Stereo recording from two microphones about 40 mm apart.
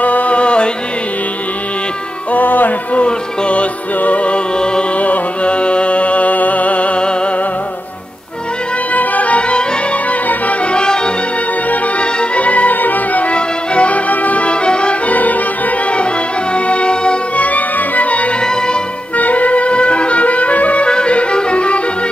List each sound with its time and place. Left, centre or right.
0.0 s music: left
2.3 s music: left
2.9 s speech: left
4.0 s music: left
8.9 s music: left
10.6 s music: left
12.0 s music: left
12.7 s music: left
13.3 s music: left
15.0 s music: left
16.5 s music: left
17.4 s music: left
18.4 s music: centre
19.1 s music: left